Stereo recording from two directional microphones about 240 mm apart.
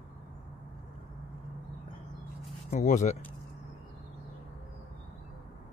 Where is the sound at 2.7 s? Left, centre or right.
Left.